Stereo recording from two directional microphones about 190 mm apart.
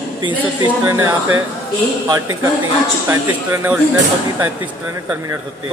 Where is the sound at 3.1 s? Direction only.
10° right (ahead or behind).